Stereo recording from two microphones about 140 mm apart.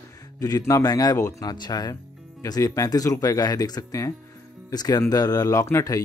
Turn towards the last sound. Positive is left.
turn(degrees=25)  # may be behind; listen again after turning